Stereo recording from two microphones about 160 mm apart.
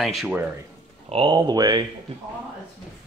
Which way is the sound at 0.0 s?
Centre (ahead or behind).